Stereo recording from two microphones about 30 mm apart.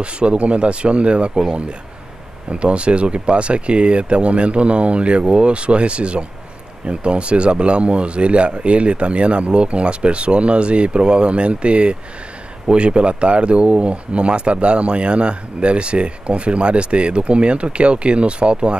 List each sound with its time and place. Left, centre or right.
0.0 s speech: right
2.5 s speech: right